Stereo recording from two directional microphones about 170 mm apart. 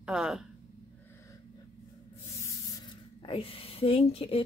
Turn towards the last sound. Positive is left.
turn(degrees=35)  # may be behind; listen again after turning